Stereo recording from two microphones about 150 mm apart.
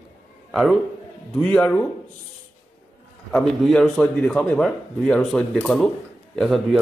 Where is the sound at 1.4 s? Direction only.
5° left (ahead or behind).